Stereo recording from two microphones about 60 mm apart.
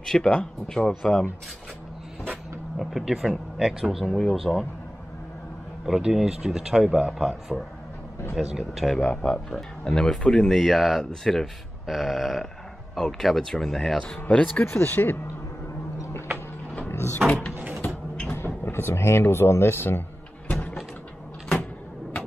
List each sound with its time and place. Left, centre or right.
0.0 s speech: centre
2.8 s speech: centre
5.9 s speech: centre
9.0 s speech: centre
9.3 s speech: centre
14.3 s speech: centre
14.6 s speech: left
16.9 s door: left
18.3 s vehicle: left